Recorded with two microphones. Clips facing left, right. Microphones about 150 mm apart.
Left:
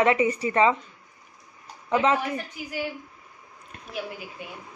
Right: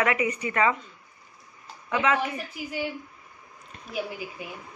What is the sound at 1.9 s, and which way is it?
Speech, 30° left (ahead or behind).